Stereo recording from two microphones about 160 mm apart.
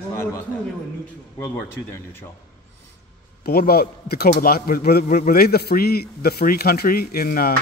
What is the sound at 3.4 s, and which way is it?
Speech, 70° left (ahead or behind).